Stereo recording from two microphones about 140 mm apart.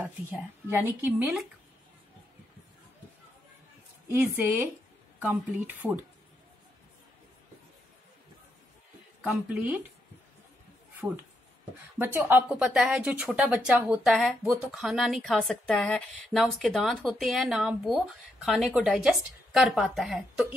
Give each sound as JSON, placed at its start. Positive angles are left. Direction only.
{"t": 0.0, "sound": "a woman's voice", "side_deg": -15}
{"t": 4.1, "sound": "a woman's voice", "side_deg": -10}
{"t": 9.2, "sound": "a woman's voice", "side_deg": -10}
{"t": 11.0, "sound": "speech", "side_deg": -5}
{"t": 12.0, "sound": "a woman's voice", "side_deg": -15}